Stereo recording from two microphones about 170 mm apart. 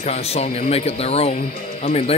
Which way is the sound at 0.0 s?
35° left (ahead or behind).